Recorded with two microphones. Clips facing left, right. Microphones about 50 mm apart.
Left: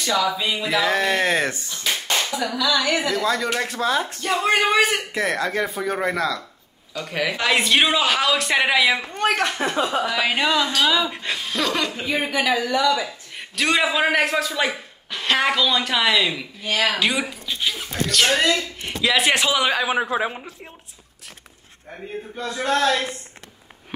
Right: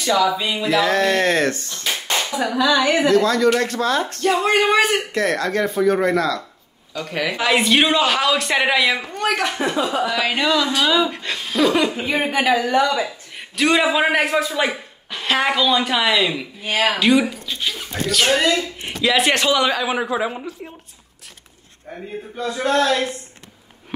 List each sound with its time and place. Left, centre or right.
0.0 s speech: centre
1.9 s clapping: centre
2.3 s clapping: right
3.1 s speech: centre
9.1 s a woman's voice: left
10.0 s speech: centre
10.3 s carnatic music: centre
10.8 s speech: centre
12.1 s a woman's voice: right
13.0 s a man's voice: centre
16.6 s a woman's voice: right
17.0 s speech: centre
19.8 s carnatic music: left
22.3 s speech: centre